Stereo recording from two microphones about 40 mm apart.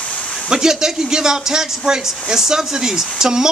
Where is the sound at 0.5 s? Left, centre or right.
Centre.